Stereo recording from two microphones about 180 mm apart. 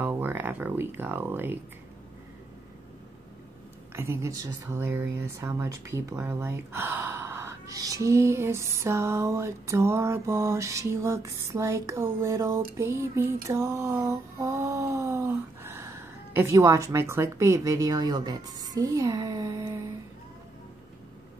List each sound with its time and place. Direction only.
0.0 s speech: 10° right (ahead or behind)
3.9 s speech: 15° right (ahead or behind)